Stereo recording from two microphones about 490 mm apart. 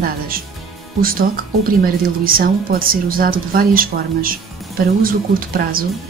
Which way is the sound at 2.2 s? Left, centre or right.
Centre.